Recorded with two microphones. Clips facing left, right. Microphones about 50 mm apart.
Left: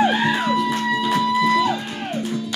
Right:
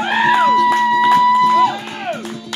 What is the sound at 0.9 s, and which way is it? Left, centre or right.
Music, right.